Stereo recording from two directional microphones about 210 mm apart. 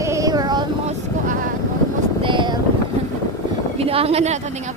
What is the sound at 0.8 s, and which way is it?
Vehicle, 35° right (ahead or behind).